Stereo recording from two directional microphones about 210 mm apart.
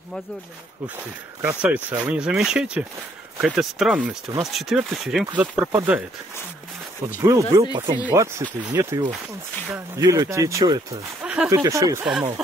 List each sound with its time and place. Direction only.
1.4 s speech: 5° right (ahead or behind)
7.2 s speech: 15° right (ahead or behind)